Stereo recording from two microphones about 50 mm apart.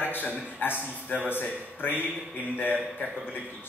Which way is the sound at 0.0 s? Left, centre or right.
Left.